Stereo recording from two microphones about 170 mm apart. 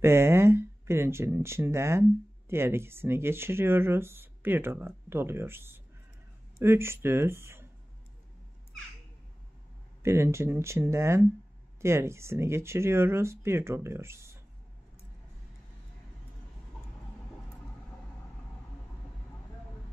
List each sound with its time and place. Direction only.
0.0 s speech: 15° right (ahead or behind)
10.0 s speech: 15° right (ahead or behind)